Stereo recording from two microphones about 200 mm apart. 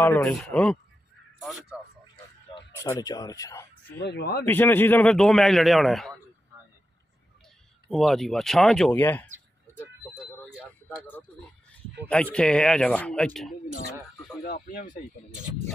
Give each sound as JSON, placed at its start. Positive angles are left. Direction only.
{"t": 0.0, "sound": "a man's voice", "side_deg": 5}
{"t": 2.8, "sound": "speech", "side_deg": 15}
{"t": 4.0, "sound": "speech", "side_deg": 55}
{"t": 4.5, "sound": "a man's voice", "side_deg": 10}
{"t": 6.5, "sound": "vehicle", "side_deg": -15}
{"t": 7.9, "sound": "a man's voice", "side_deg": 0}
{"t": 10.1, "sound": "a sound", "side_deg": -5}
{"t": 12.1, "sound": "a man's voice", "side_deg": 5}
{"t": 14.4, "sound": "speech", "side_deg": 45}